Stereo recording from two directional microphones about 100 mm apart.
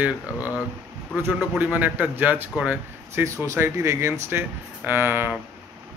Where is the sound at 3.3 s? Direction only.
30° right (ahead or behind).